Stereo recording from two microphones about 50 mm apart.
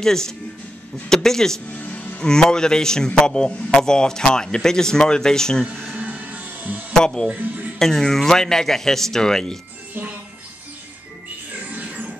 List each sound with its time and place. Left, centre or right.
0.0 s a man's voice: centre
1.7 s music: left
2.1 s a man's voice: centre
5.9 s music: right
6.9 s speech: centre
7.2 s speech: right
7.8 s a man's voice: centre
11.7 s music: right